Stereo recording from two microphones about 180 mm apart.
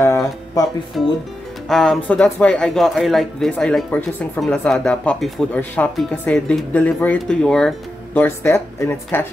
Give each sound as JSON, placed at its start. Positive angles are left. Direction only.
{"t": 0.0, "sound": "music", "side_deg": 15}
{"t": 1.0, "sound": "speech", "side_deg": 0}